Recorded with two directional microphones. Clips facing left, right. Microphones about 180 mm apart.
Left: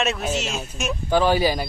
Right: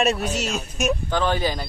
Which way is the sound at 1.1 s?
10° left (ahead or behind).